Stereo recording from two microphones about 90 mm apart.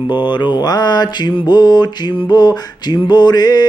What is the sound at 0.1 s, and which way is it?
Music, 55° left (ahead or behind).